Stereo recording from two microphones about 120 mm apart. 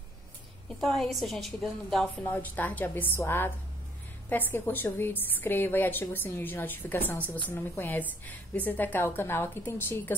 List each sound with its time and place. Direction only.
0.7 s a woman's voice: centre (ahead or behind)
2.2 s a woman's voice: 15° left (ahead or behind)